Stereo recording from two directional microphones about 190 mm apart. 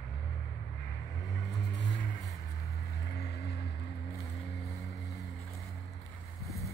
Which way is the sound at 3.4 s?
60° left (ahead or behind).